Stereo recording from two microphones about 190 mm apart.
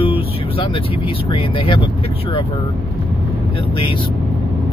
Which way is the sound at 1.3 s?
25° left (ahead or behind).